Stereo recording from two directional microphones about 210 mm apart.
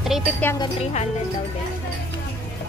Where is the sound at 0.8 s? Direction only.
30° left (ahead or behind).